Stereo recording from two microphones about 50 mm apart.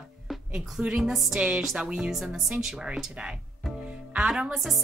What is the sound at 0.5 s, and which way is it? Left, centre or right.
A woman's voice, centre.